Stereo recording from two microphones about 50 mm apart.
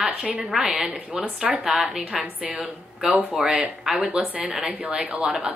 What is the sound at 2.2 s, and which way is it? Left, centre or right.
Speech, right.